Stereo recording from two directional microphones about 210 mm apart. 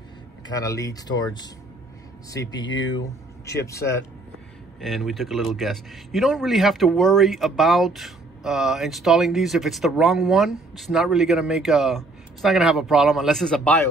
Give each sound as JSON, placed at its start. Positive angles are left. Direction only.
{"t": 0.6, "sound": "speech", "side_deg": 15}
{"t": 4.7, "sound": "a man's voice", "side_deg": 0}